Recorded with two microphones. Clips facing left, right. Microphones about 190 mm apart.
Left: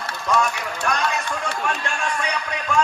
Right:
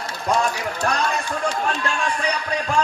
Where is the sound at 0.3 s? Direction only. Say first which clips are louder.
Right 1 dB; 35° right (ahead or behind).